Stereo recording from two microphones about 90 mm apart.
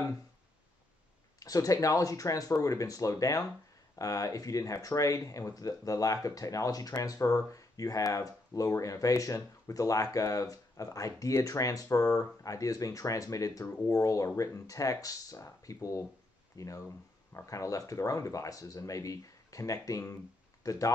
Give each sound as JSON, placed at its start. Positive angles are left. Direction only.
{"t": 1.4, "sound": "speech", "side_deg": 40}